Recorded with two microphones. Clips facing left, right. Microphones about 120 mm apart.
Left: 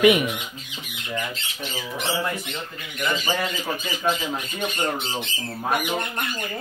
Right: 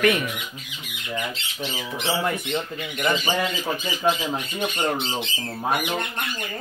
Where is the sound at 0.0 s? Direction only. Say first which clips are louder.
Left 4 dB; 15° left (ahead or behind).